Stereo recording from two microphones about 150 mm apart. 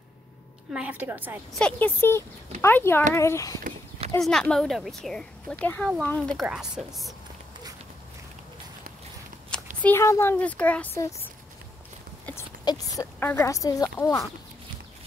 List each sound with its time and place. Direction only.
0.7 s a woman's voice: 10° right (ahead or behind)
1.5 s speech: 10° left (ahead or behind)
4.2 s speech: 5° left (ahead or behind)
6.4 s speech: 5° right (ahead or behind)
9.8 s speech: 15° left (ahead or behind)
12.6 s speech: 25° left (ahead or behind)